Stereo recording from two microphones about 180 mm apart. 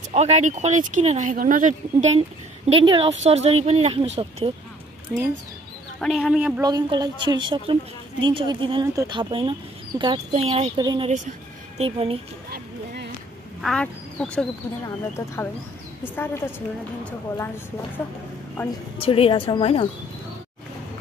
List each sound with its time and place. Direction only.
0.1 s speech: 35° right (ahead or behind)
5.1 s speech: 15° right (ahead or behind)
5.9 s speech: centre (ahead or behind)
6.6 s speech: 20° right (ahead or behind)
10.8 s speech: 25° right (ahead or behind)
11.1 s speech: 40° right (ahead or behind)
12.4 s music: 60° right (ahead or behind)
13.6 s speech: 5° left (ahead or behind)
16.0 s a woman's voice: 10° left (ahead or behind)
18.6 s a woman's voice: 10° left (ahead or behind)
18.9 s a woman's voice: 30° left (ahead or behind)